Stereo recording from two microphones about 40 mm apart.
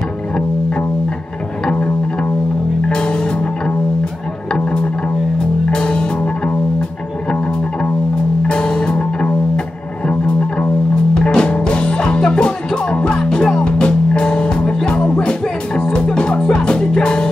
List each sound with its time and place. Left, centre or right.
2.9 s music: left
8.5 s music: left